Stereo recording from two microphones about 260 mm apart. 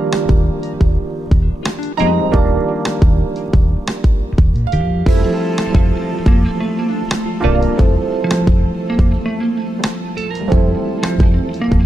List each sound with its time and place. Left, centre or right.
0.1 s music: centre
2.0 s music: centre
5.0 s music: centre